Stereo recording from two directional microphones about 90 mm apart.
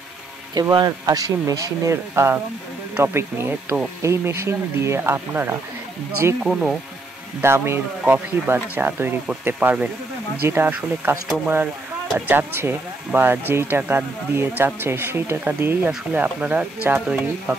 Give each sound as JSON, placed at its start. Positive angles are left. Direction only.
{"t": 0.6, "sound": "speech", "side_deg": -45}
{"t": 6.4, "sound": "speech", "side_deg": -5}
{"t": 7.4, "sound": "speech", "side_deg": -30}